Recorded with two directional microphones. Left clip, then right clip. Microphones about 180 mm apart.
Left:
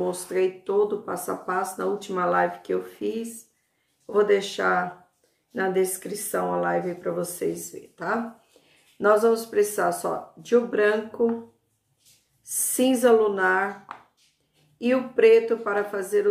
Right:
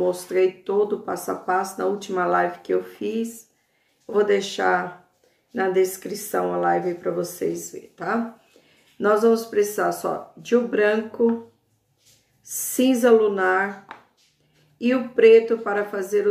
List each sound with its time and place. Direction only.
0.3 s speech: 20° right (ahead or behind)
12.4 s speech: 20° right (ahead or behind)
14.8 s speech: 20° right (ahead or behind)